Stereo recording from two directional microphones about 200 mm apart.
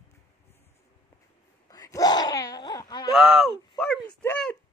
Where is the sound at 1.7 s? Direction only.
20° left (ahead or behind).